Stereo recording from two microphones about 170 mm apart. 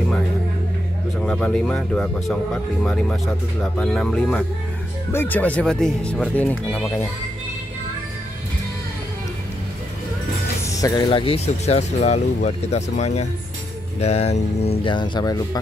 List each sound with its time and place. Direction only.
1.2 s speech: 5° left (ahead or behind)
10.7 s music: 20° left (ahead or behind)
11.1 s speech: 35° left (ahead or behind)